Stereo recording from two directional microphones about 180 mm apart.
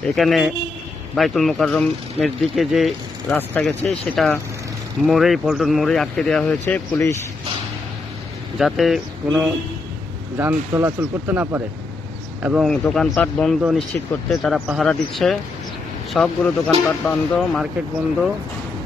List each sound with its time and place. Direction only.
0.0 s speech: centre (ahead or behind)
8.5 s speech: centre (ahead or behind)
10.3 s speech: 15° right (ahead or behind); by 13.6 s 5° left (ahead or behind)
13.6 s speech: 5° right (ahead or behind)